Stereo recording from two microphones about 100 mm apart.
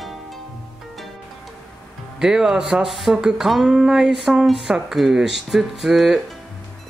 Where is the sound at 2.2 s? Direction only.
5° right (ahead or behind).